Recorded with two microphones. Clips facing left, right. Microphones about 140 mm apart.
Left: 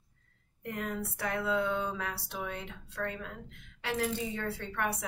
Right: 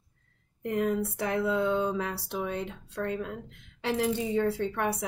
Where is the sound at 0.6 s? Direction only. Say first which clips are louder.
Right 9 dB; 25° right (ahead or behind).